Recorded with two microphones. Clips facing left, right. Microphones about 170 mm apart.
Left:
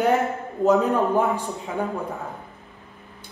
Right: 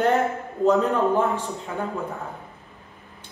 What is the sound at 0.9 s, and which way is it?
Speech, 10° left (ahead or behind).